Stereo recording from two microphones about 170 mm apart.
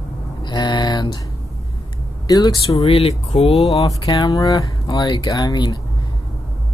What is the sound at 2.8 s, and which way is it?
Speech, 35° left (ahead or behind).